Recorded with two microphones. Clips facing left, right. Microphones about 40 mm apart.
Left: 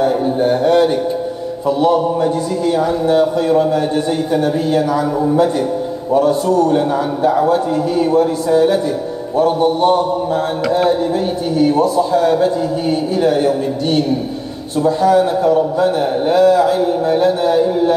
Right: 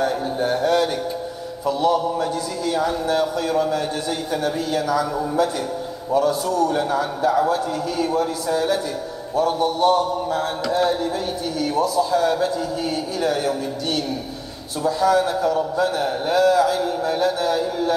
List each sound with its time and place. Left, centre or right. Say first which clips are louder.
0.0 s a man's voice: left 7 dB; left